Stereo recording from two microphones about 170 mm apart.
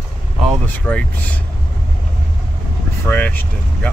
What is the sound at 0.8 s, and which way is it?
Speech, 5° left (ahead or behind).